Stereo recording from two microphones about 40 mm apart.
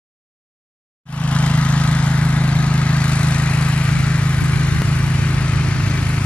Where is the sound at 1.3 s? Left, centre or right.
Left.